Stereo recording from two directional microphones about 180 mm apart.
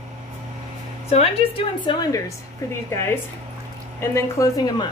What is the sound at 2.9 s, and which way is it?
A woman's voice, 15° left (ahead or behind).